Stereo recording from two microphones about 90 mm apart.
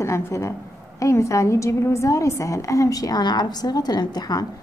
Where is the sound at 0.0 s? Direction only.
30° left (ahead or behind).